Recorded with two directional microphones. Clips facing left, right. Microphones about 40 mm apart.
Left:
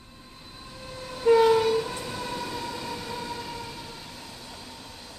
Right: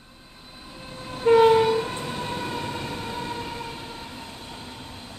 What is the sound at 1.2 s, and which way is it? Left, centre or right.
Train, right.